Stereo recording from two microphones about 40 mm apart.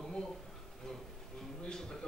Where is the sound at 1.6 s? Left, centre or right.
Centre.